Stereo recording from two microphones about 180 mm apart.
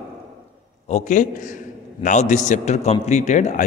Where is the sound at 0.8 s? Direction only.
40° left (ahead or behind).